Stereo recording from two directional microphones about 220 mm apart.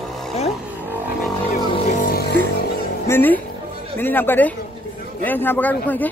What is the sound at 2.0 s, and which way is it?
Music, 45° left (ahead or behind).